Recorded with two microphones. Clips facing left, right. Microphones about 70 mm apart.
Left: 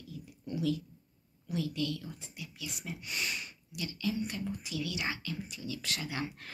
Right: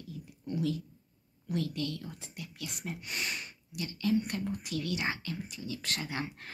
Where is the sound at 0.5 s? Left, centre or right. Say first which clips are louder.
Even; right.